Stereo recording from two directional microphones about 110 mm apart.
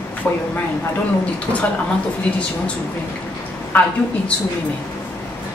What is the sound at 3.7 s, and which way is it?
Speech, 15° left (ahead or behind).